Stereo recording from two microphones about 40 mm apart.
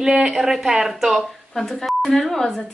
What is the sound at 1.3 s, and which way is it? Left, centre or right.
Speech, centre.